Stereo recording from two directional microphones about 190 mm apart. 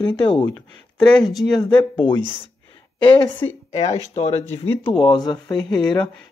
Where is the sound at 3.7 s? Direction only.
35° left (ahead or behind).